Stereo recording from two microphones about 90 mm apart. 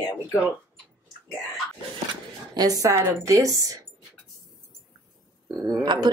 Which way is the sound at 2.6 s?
40° right (ahead or behind).